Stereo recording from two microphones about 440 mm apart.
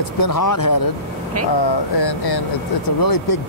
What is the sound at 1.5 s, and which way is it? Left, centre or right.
Speech, left.